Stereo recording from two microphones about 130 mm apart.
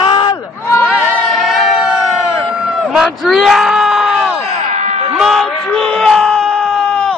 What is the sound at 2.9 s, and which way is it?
Speech, 5° right (ahead or behind).